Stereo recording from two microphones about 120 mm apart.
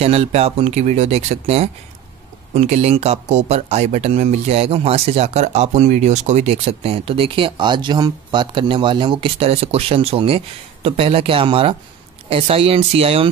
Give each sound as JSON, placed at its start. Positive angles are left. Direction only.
{"t": 0.0, "sound": "speech", "side_deg": -60}